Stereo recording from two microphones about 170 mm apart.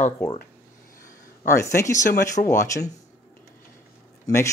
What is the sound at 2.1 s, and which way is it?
Speech, 50° left (ahead or behind).